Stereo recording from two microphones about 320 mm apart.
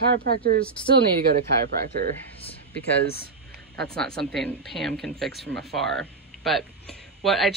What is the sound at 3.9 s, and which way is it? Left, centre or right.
Speech, centre.